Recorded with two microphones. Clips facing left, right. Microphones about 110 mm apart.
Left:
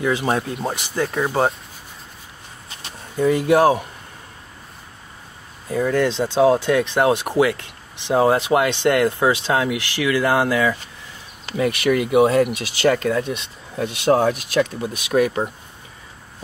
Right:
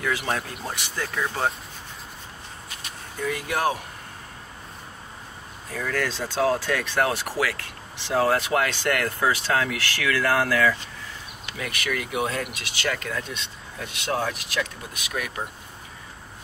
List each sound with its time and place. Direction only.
0.0 s speech: 25° left (ahead or behind)
3.2 s speech: 25° left (ahead or behind)
5.7 s speech: 25° left (ahead or behind)
11.4 s speech: 30° left (ahead or behind)